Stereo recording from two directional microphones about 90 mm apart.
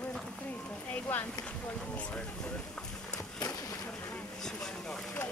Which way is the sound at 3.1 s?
45° left (ahead or behind).